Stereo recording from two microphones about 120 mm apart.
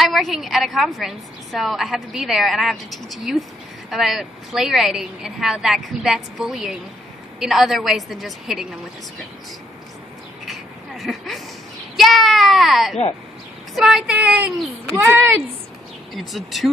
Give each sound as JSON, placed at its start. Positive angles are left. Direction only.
{"t": 0.0, "sound": "a woman's voice", "side_deg": 0}
{"t": 10.4, "sound": "a sound", "side_deg": 0}
{"t": 12.0, "sound": "a woman's voice", "side_deg": 0}
{"t": 16.1, "sound": "a woman's voice", "side_deg": 0}